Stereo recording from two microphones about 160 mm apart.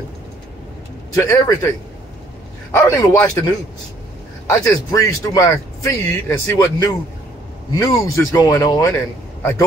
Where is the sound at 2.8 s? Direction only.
20° left (ahead or behind).